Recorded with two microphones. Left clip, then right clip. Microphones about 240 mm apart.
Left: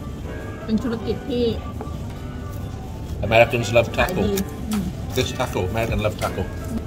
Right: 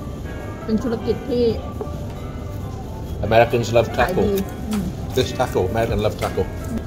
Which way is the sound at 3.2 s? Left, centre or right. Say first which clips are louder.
Right 1 dB; left.